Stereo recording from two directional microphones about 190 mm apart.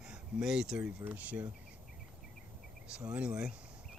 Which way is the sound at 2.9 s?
5° right (ahead or behind).